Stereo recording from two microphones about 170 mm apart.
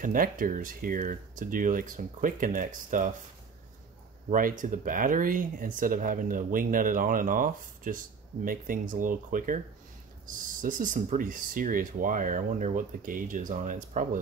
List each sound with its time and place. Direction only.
0.0 s speech: 55° right (ahead or behind)
4.3 s speech: 50° right (ahead or behind)